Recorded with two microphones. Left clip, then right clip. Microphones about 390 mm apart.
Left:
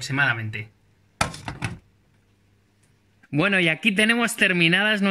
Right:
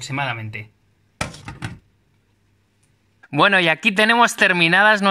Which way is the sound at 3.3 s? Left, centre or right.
Centre.